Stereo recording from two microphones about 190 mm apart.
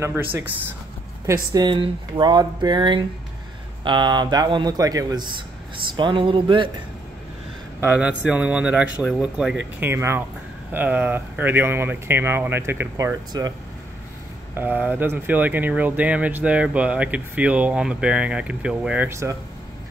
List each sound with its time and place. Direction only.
0.0 s speech: 10° right (ahead or behind)
1.5 s speech: 25° right (ahead or behind)
7.8 s speech: 10° right (ahead or behind)
14.5 s speech: 10° right (ahead or behind)